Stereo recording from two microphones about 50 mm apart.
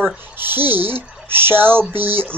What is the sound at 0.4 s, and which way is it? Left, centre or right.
Speech, right.